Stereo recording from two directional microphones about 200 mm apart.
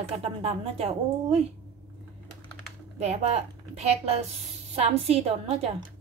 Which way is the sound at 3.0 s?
35° right (ahead or behind).